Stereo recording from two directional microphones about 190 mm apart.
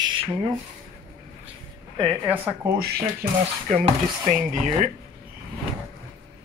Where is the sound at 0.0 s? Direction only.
25° right (ahead or behind).